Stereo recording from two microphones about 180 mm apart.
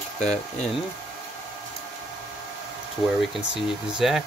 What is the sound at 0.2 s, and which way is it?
Speech, 35° left (ahead or behind).